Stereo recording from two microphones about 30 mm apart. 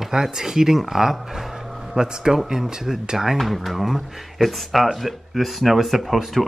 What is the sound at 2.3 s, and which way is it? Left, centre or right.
Speech, centre.